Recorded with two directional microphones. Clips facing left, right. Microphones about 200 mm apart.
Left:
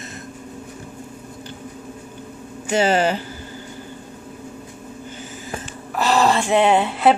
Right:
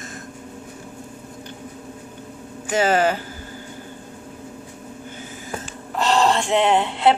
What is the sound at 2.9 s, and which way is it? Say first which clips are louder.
Speech: right 1 dB; 50° right (ahead or behind).